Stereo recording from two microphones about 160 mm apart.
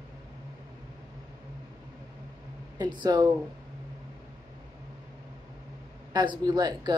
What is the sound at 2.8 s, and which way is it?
Speech, 30° right (ahead or behind).